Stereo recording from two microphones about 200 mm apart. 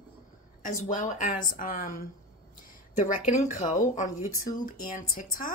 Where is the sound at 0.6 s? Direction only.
40° left (ahead or behind).